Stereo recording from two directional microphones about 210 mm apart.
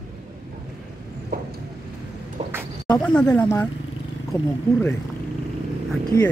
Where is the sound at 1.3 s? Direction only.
45° right (ahead or behind).